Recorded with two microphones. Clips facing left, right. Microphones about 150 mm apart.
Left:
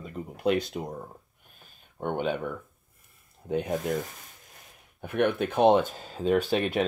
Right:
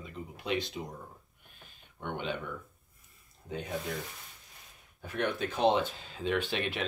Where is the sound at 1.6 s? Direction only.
45° left (ahead or behind).